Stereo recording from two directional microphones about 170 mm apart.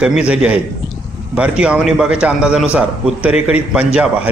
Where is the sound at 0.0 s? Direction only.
5° right (ahead or behind).